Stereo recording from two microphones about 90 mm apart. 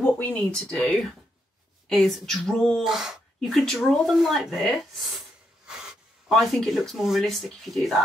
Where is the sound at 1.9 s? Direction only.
5° left (ahead or behind).